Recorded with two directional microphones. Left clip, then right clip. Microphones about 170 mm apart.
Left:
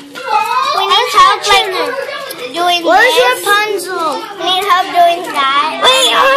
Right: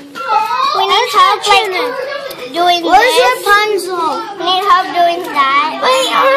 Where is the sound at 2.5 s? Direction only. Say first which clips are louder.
Right 1 dB; 25° right (ahead or behind).